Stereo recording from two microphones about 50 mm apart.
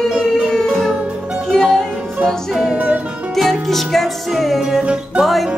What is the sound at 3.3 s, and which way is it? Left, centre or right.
Music, centre.